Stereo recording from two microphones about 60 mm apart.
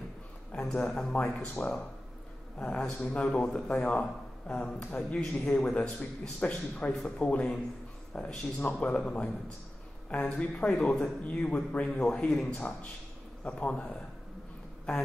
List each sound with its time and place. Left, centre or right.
0.5 s a man's voice: centre
10.4 s a man's voice: left